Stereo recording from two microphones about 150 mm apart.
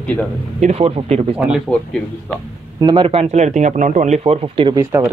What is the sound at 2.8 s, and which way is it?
Speech, 35° right (ahead or behind).